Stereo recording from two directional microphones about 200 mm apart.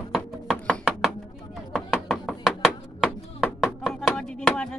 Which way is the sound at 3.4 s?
5° left (ahead or behind).